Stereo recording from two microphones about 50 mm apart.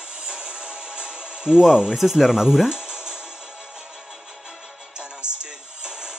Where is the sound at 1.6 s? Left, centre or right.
Centre.